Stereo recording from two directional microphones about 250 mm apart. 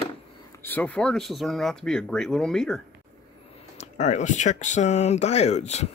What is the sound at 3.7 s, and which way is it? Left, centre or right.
Speech, left.